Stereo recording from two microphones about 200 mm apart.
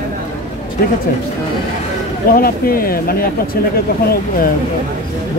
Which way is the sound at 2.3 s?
45° left (ahead or behind).